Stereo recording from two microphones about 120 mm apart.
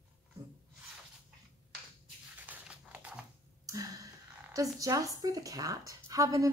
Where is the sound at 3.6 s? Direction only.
30° right (ahead or behind).